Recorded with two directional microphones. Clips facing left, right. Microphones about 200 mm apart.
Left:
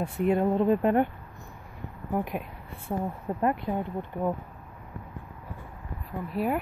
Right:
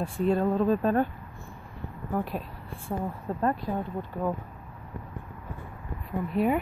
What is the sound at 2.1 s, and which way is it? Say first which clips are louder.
A woman's voice: left 1 dB; 15° left (ahead or behind).